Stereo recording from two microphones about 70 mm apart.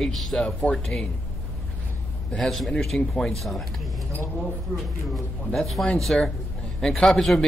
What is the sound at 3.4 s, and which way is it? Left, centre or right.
Speech, centre.